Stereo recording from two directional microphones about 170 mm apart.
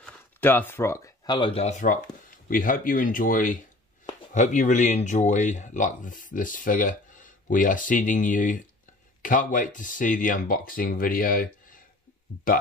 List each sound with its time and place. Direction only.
0.0 s speech: 10° left (ahead or behind); by 12.6 s 55° left (ahead or behind)